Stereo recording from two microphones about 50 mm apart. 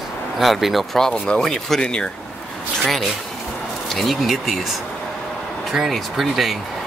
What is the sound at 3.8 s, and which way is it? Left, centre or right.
Speech, centre.